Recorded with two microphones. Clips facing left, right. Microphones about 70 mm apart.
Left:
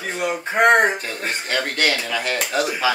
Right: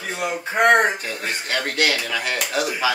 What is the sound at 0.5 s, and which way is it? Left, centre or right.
Speech, left.